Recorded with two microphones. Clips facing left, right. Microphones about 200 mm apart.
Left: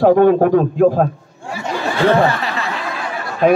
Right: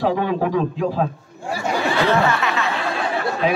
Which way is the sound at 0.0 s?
50° left (ahead or behind).